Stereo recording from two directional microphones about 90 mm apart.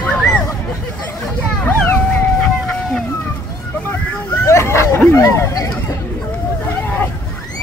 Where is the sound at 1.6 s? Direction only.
25° left (ahead or behind).